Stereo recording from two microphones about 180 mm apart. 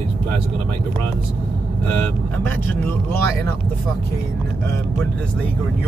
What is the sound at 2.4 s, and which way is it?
Speech, 10° left (ahead or behind).